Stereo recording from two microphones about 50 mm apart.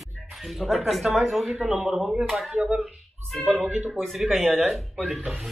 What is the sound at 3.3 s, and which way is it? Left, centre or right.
Speech, centre.